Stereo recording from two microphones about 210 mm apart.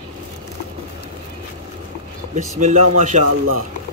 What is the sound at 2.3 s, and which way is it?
Speech, 35° right (ahead or behind).